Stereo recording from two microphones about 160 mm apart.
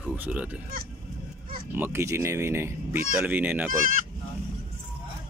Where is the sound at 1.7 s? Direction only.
15° right (ahead or behind).